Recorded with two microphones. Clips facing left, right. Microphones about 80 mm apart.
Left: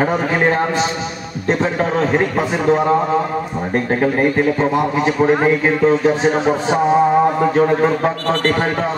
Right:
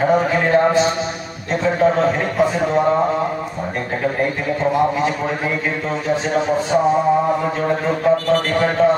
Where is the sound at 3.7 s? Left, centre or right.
Left.